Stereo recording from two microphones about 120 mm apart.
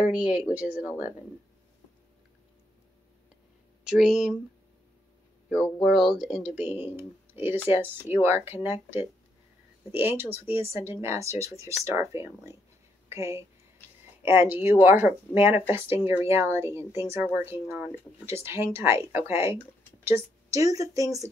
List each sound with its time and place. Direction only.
0.0 s speech: 10° right (ahead or behind)
3.8 s speech: 5° right (ahead or behind)
5.5 s speech: centre (ahead or behind)
6.7 s speech: 15° right (ahead or behind)
9.8 s speech: 15° right (ahead or behind)